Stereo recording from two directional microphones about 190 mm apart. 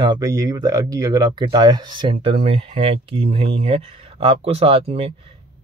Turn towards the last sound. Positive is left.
turn(degrees=-30)  # may be behind; listen again after turning